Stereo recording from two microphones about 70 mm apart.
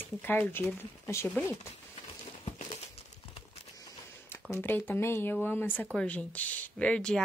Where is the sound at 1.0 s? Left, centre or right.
Left.